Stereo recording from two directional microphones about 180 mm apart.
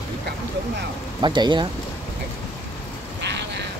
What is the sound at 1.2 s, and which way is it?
Speech, 25° right (ahead or behind).